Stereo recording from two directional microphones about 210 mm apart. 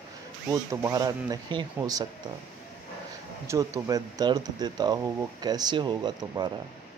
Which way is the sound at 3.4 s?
15° right (ahead or behind).